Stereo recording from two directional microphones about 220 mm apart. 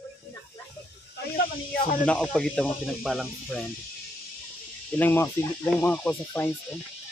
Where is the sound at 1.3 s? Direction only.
40° left (ahead or behind).